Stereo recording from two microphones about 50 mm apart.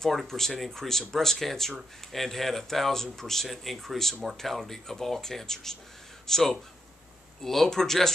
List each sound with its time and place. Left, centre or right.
0.3 s speech: centre